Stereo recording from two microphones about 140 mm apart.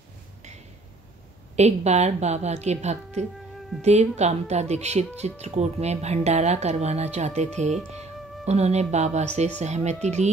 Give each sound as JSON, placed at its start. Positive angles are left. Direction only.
{"t": 1.6, "sound": "a woman's voice", "side_deg": -50}